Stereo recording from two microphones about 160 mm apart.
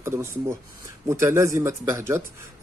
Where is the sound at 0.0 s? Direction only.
15° right (ahead or behind).